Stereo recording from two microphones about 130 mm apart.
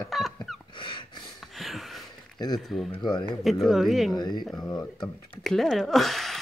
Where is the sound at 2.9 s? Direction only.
35° left (ahead or behind).